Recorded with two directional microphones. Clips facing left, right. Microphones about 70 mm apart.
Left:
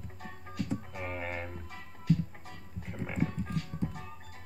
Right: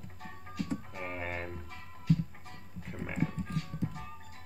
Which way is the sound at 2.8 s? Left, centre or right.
Centre.